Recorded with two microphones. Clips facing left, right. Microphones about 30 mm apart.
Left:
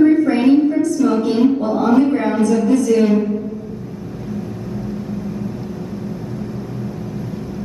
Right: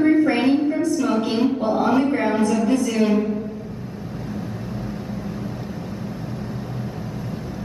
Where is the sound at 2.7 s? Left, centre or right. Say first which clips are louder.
Left 6 dB; centre.